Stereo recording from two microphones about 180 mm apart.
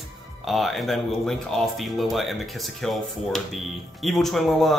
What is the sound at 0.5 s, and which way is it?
Speech, centre (ahead or behind).